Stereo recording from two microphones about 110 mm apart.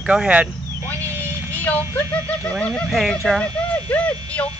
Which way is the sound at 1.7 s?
25° right (ahead or behind).